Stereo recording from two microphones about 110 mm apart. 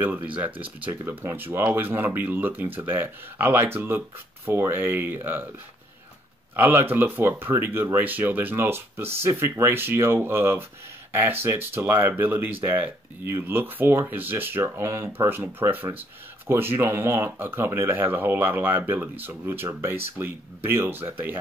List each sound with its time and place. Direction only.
0.0 s speech: 15° right (ahead or behind)
6.5 s speech: 20° right (ahead or behind)